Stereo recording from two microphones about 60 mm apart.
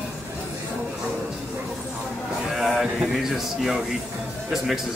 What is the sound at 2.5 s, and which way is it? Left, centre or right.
Speech, centre.